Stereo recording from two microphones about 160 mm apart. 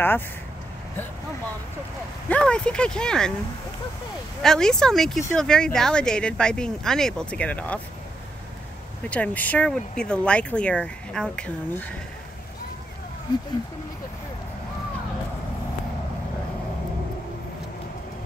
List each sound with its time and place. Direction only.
2.2 s speech: 5° left (ahead or behind)
4.4 s speech: 5° left (ahead or behind)
9.1 s speech: 10° left (ahead or behind)